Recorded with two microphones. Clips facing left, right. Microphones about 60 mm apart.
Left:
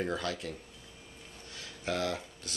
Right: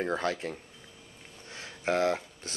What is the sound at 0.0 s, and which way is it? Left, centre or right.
Speech, right.